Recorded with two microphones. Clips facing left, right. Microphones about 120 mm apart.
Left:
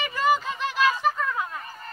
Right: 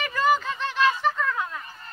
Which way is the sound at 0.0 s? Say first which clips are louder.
Right 1 dB; centre (ahead or behind).